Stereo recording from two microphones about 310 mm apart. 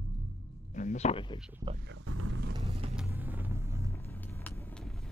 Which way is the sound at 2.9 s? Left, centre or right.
Centre.